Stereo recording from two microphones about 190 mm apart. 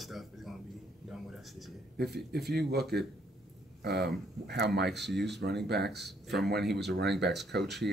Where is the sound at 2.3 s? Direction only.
60° right (ahead or behind).